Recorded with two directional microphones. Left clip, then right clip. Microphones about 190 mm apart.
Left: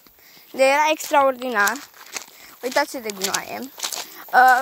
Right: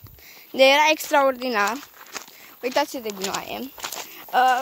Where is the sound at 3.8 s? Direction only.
40° left (ahead or behind).